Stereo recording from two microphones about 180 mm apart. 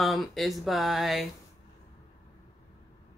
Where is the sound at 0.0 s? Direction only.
Centre (ahead or behind).